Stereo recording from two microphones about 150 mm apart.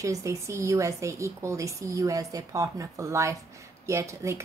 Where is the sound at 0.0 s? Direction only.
20° right (ahead or behind).